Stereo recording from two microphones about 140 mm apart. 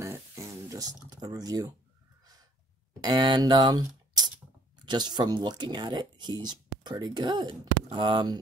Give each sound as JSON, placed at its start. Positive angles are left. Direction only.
{"t": 0.7, "sound": "a sound", "side_deg": -25}
{"t": 1.2, "sound": "speech", "side_deg": -25}
{"t": 3.0, "sound": "speech", "side_deg": -30}